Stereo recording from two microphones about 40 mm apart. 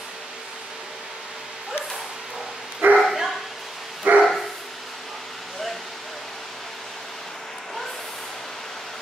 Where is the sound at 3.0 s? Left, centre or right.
Centre.